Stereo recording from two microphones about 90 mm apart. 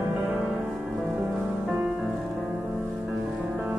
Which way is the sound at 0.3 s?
10° right (ahead or behind).